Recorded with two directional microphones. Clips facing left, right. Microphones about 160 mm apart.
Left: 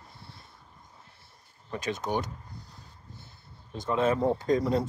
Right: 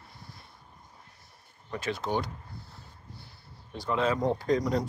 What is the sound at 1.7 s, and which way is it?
Speech, 20° left (ahead or behind).